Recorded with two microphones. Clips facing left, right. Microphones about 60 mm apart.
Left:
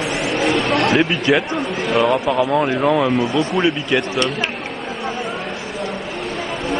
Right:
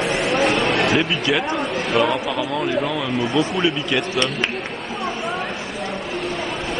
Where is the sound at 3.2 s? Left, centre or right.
Centre.